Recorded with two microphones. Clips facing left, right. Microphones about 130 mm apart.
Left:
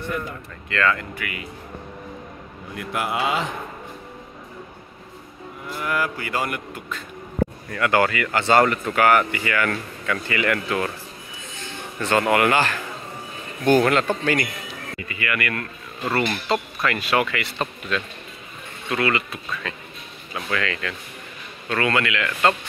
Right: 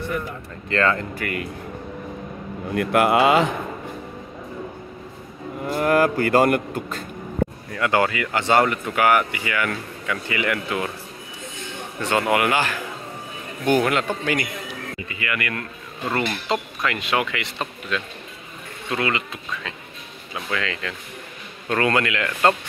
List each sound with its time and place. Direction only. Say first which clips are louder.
0.7 s speech: right 2 dB; 35° right (ahead or behind)
2.7 s a man's voice: right 9 dB; 60° right (ahead or behind)
5.6 s speech: right 7 dB; 45° right (ahead or behind)
7.7 s speech: left 1 dB; 20° right (ahead or behind)
12.0 s speech: left 1 dB; 15° right (ahead or behind)
15.0 s speech: left 2 dB; 25° right (ahead or behind)
21.6 s speech: right 2 dB; 40° right (ahead or behind)